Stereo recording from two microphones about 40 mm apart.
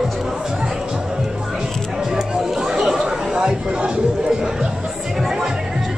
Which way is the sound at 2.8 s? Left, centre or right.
Centre.